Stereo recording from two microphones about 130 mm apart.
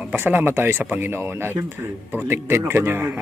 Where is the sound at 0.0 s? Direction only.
15° right (ahead or behind).